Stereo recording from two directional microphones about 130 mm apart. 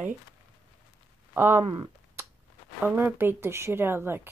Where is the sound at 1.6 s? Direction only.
35° right (ahead or behind).